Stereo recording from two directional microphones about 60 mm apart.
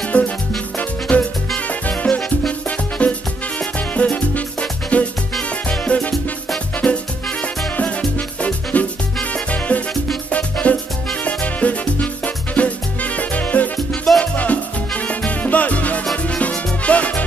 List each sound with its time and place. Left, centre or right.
0.1 s music: left
6.8 s music: centre
8.4 s music: left